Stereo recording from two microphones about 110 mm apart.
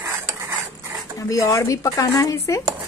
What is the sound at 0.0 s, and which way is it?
Dog, 25° right (ahead or behind).